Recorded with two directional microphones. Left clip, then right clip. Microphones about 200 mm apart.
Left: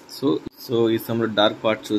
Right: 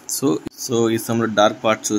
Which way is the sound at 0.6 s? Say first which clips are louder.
Right 1 dB; 15° right (ahead or behind).